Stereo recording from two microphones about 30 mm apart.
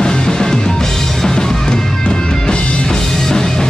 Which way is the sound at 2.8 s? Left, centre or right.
Centre.